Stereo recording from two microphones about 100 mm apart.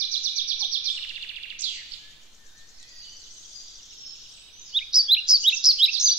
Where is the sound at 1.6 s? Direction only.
15° right (ahead or behind).